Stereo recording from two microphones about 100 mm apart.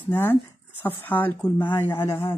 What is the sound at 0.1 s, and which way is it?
Speech, 20° left (ahead or behind).